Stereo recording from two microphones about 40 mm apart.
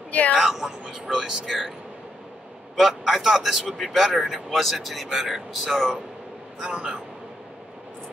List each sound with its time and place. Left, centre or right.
0.4 s a man's voice: centre
2.7 s a man's voice: centre
6.6 s a man's voice: right